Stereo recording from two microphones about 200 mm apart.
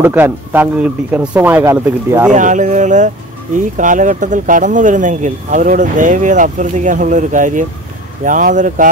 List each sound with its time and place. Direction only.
0.0 s speech: 10° right (ahead or behind)
2.3 s speech: 40° right (ahead or behind)